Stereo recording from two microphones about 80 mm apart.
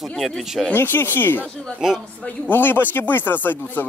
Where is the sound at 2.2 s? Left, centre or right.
Left.